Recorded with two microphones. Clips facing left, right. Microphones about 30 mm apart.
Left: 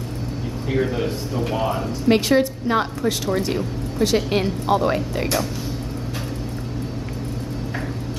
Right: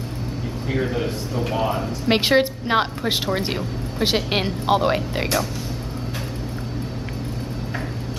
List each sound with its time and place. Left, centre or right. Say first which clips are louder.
0.7 s a man's voice: left 2 dB; centre
2.0 s a woman's voice: left 1 dB; right